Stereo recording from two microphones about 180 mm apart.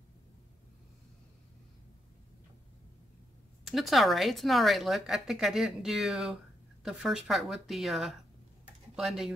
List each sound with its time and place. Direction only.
3.6 s a woman's voice: centre (ahead or behind)